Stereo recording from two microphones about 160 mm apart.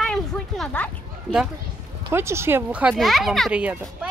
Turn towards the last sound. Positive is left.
turn(degrees=-10)  # may be behind; listen again after turning